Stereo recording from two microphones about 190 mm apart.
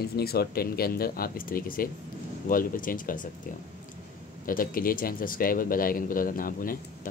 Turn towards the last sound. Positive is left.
turn(degrees=50)  # may be behind; listen again after turning